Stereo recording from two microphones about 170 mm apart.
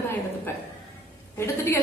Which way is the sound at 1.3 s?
15° left (ahead or behind).